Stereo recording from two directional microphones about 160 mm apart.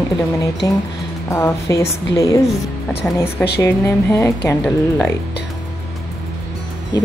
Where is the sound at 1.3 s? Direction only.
20° left (ahead or behind).